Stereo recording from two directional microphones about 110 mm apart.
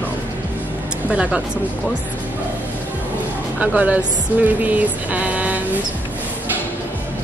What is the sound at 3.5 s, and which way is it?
A woman's voice, 15° right (ahead or behind).